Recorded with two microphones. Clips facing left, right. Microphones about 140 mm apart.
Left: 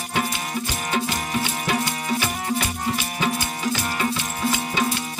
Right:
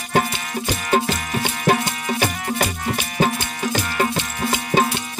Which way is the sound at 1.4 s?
45° right (ahead or behind).